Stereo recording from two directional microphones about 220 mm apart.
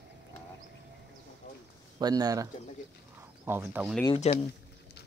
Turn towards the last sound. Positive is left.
turn(degrees=30)  # may be behind; listen again after turning